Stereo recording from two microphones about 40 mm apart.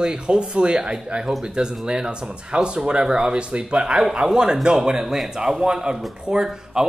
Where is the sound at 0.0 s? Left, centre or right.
Right; by 5.3 s centre.